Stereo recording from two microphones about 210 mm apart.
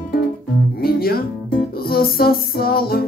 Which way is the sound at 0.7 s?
45° left (ahead or behind).